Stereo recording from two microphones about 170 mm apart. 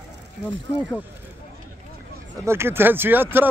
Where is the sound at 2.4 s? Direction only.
15° right (ahead or behind).